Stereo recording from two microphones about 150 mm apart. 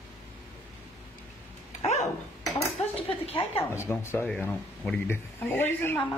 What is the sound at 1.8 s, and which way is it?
Dog, 50° left (ahead or behind).